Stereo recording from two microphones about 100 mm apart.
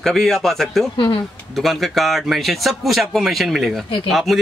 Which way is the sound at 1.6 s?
Centre (ahead or behind).